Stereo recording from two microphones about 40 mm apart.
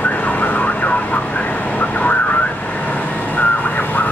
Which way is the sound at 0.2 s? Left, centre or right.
Left.